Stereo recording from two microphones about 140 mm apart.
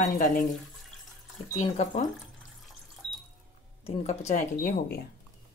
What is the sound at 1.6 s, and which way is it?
Speech, 55° left (ahead or behind).